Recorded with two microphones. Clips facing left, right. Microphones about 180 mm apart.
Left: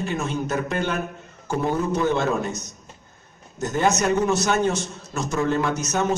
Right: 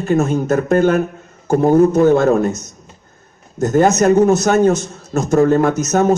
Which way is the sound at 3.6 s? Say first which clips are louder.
Right 9 dB; 45° right (ahead or behind).